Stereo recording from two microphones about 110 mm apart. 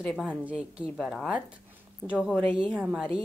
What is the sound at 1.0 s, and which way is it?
A woman's voice, 5° right (ahead or behind).